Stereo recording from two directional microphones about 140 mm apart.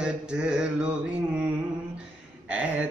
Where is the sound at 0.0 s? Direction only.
5° right (ahead or behind).